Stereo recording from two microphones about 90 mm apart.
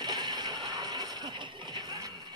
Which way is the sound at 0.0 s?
55° right (ahead or behind).